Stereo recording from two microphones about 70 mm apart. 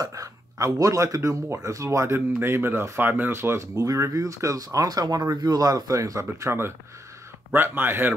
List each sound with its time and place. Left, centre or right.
0.0 s speech: right
2.1 s speech: right
3.7 s speech: right
7.5 s speech: right